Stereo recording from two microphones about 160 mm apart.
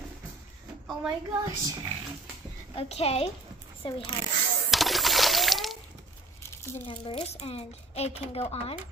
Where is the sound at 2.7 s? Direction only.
35° left (ahead or behind).